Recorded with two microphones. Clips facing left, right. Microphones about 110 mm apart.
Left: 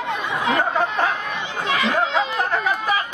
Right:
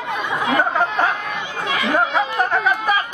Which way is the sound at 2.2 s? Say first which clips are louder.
Right 3 dB; 15° right (ahead or behind).